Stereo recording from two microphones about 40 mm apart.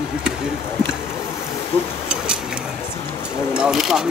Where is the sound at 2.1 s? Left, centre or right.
Centre.